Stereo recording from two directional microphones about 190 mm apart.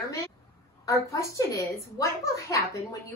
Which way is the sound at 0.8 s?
15° left (ahead or behind).